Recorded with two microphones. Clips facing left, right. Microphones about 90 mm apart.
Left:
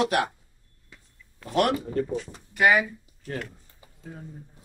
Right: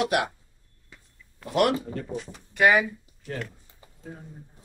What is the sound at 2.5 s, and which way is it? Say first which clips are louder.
Speech: right 1 dB; centre (ahead or behind).